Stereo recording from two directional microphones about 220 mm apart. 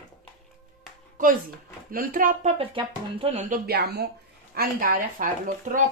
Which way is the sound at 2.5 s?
25° right (ahead or behind).